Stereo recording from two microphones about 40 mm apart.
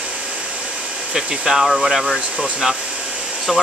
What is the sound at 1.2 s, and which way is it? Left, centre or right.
Speech, centre.